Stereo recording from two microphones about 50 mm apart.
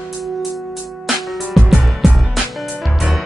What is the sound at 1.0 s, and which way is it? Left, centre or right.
Music, centre.